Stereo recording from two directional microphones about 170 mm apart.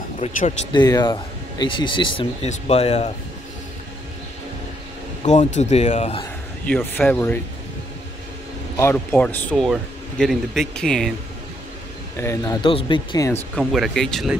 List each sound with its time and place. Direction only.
0.2 s speech: 40° left (ahead or behind)
0.7 s speech: 25° left (ahead or behind)
5.2 s speech: 45° left (ahead or behind)
6.6 s speech: 10° left (ahead or behind)
8.7 s speech: 15° left (ahead or behind)
12.2 s speech: 15° left (ahead or behind)
12.6 s speech: 30° left (ahead or behind)
13.7 s speech: centre (ahead or behind)